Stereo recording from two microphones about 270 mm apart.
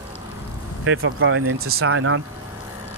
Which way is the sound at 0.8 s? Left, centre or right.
Right.